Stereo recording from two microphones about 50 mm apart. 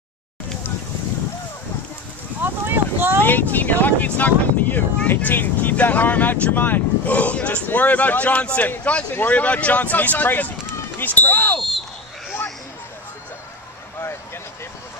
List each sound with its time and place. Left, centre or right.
2.4 s boat: right
3.3 s speech: left